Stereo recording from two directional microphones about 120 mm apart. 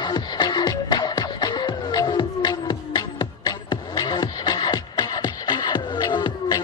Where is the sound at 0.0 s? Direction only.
35° left (ahead or behind).